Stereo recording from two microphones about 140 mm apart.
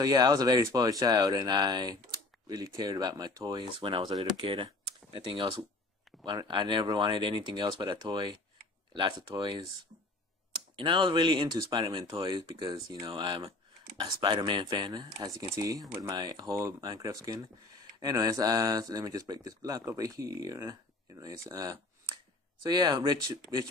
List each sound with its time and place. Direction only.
0.0 s speech: 25° right (ahead or behind)
10.8 s speech: 35° right (ahead or behind)